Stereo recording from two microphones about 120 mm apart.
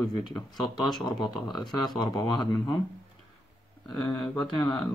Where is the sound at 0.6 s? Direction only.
Centre (ahead or behind).